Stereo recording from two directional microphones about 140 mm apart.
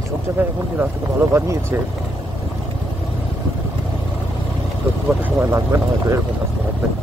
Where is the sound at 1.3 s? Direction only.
20° right (ahead or behind).